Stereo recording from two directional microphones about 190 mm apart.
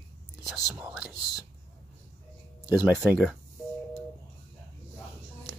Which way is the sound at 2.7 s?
10° right (ahead or behind).